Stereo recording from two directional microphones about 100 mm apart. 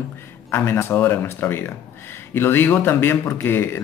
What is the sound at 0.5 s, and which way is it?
A man's voice, 25° left (ahead or behind).